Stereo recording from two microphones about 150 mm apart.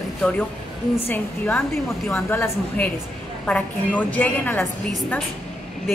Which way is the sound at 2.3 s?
15° left (ahead or behind).